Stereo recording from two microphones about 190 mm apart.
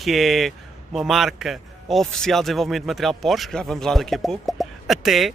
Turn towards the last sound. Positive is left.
turn(degrees=0)  # may be behind; listen again after turning